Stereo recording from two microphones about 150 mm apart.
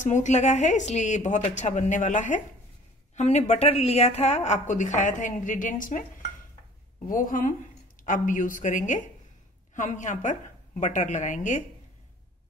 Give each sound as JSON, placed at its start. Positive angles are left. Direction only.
{"t": 0.0, "sound": "a woman's voice", "side_deg": 50}
{"t": 7.1, "sound": "a woman's voice", "side_deg": 65}